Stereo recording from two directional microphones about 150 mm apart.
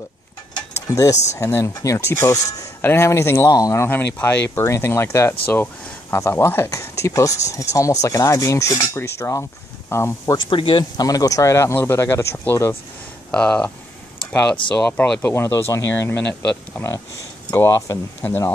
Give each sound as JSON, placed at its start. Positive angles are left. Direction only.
{"t": 0.6, "sound": "mechanisms", "side_deg": 20}
{"t": 1.1, "sound": "speech", "side_deg": 50}
{"t": 1.4, "sound": "speech", "side_deg": 20}
{"t": 10.5, "sound": "speech", "side_deg": 35}